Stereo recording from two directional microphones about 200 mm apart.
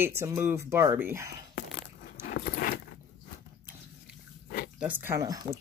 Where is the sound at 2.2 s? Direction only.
45° left (ahead or behind).